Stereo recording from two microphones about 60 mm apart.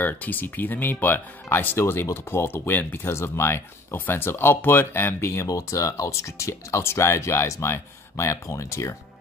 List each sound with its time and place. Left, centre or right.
0.0 s speech: left
5.5 s speech: left
8.3 s speech: left